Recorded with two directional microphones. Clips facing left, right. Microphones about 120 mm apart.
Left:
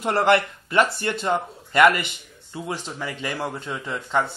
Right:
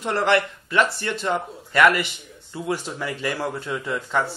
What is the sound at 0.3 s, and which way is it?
Speech, 25° left (ahead or behind).